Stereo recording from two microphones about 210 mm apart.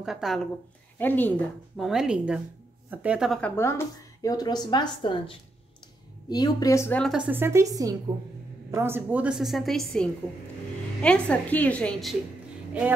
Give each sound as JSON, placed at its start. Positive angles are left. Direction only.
{"t": 0.0, "sound": "a woman's voice", "side_deg": 0}